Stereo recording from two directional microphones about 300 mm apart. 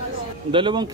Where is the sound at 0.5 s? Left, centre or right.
Centre.